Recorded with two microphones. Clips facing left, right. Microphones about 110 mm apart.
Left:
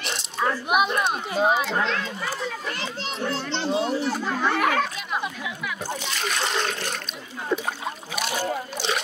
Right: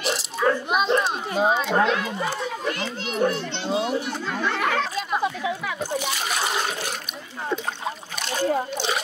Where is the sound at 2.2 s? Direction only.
25° right (ahead or behind).